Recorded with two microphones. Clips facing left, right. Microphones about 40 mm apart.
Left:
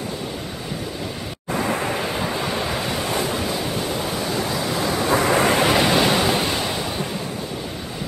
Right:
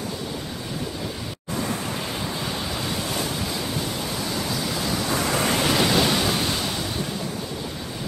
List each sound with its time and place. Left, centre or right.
1.5 s waves: left
4.7 s waves: left